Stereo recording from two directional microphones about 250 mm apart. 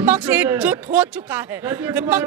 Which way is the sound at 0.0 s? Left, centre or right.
Centre.